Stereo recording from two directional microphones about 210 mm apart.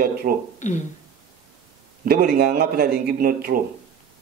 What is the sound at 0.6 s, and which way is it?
Speech, 35° left (ahead or behind).